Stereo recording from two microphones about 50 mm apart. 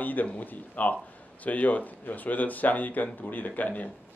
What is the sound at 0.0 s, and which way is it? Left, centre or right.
Speech, left.